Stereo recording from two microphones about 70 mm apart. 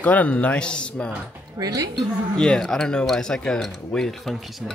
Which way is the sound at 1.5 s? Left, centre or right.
Right.